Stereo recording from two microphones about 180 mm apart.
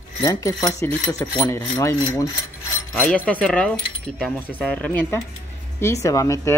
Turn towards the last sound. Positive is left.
turn(degrees=15)  # may be behind; listen again after turning